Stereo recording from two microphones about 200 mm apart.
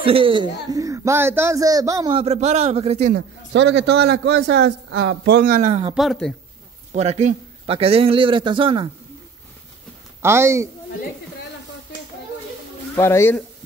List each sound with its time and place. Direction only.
0.0 s speech: 25° right (ahead or behind)
2.1 s a man's voice: 30° right (ahead or behind)
3.2 s a man's voice: 60° right (ahead or behind)
5.6 s a man's voice: 30° right (ahead or behind)
5.9 s speech: centre (ahead or behind)
6.9 s a man's voice: 35° right (ahead or behind)
10.2 s speech: 15° right (ahead or behind)
12.9 s speech: 15° left (ahead or behind)